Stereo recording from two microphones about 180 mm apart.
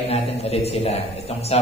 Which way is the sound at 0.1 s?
35° left (ahead or behind).